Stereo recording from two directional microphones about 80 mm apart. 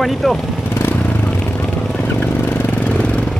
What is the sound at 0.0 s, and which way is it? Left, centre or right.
Speech, centre.